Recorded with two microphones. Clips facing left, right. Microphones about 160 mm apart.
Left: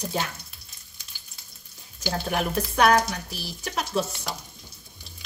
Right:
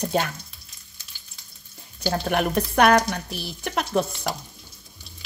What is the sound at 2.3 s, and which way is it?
Speech, 60° right (ahead or behind).